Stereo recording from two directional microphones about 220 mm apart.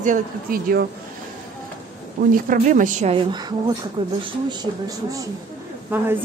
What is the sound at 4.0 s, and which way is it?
Speech, 25° right (ahead or behind).